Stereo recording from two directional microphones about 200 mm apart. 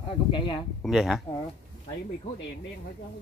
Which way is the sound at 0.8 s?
Centre (ahead or behind).